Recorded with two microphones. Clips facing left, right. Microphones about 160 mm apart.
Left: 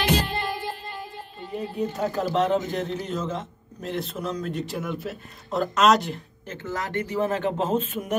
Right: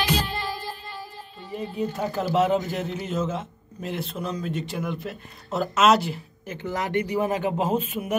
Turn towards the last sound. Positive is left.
turn(degrees=-10)  # may be behind; listen again after turning